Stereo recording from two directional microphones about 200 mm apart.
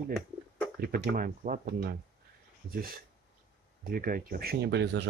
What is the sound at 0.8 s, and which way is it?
Speech, 45° right (ahead or behind).